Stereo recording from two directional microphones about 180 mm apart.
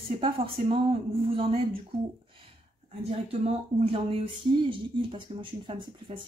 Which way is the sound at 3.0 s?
35° right (ahead or behind).